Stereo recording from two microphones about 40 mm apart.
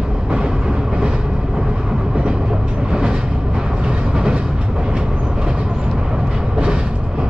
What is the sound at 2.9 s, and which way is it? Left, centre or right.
Vehicle, right.